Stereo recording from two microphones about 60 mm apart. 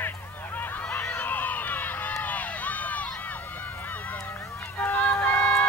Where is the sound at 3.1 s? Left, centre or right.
Left.